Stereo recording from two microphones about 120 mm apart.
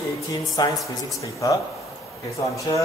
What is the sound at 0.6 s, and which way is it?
Speech, 30° left (ahead or behind).